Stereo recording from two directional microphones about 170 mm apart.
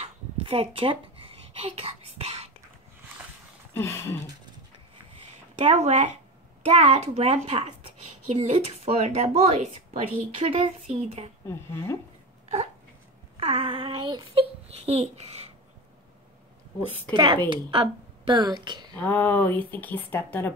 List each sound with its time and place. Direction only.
0.0 s a sound: 35° right (ahead or behind)
3.7 s speech: 15° left (ahead or behind)
5.6 s a woman's voice: 35° right (ahead or behind)
11.4 s speech: 15° left (ahead or behind)
13.4 s child singing: 35° right (ahead or behind)
17.1 s speech: 25° right (ahead or behind)
18.9 s speech: 10° left (ahead or behind)